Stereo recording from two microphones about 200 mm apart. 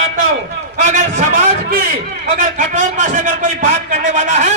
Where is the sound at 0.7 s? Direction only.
40° right (ahead or behind).